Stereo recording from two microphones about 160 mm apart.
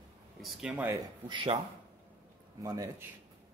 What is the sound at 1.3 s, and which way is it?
Speech, 30° right (ahead or behind).